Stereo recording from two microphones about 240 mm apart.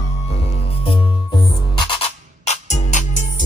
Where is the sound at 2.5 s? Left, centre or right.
Left.